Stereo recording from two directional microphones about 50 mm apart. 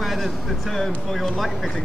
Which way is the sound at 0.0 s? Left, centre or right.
Centre.